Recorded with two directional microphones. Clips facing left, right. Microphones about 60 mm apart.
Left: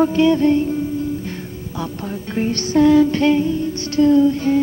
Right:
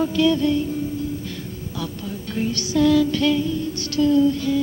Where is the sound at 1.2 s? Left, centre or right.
Left.